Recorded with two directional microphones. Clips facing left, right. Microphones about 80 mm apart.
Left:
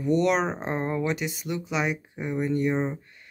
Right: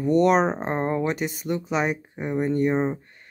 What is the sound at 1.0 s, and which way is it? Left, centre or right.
Speech, right.